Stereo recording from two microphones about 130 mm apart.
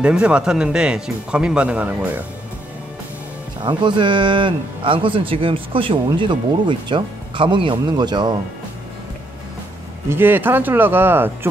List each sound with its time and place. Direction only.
0.0 s speech: 10° right (ahead or behind)
3.6 s speech: 35° right (ahead or behind)
10.0 s speech: 15° right (ahead or behind)